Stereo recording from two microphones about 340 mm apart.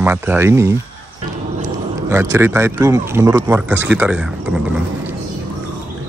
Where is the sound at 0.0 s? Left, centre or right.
Centre.